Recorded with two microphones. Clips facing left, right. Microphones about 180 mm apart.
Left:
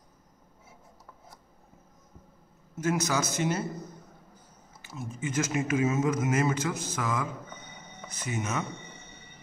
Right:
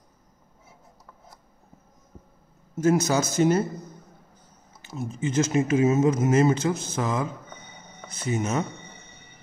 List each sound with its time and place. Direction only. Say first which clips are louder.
2.8 s speech: right 7 dB; 30° right (ahead or behind)
4.9 s speech: right 6 dB; 25° right (ahead or behind)
8.3 s speech: right 6 dB; 30° right (ahead or behind)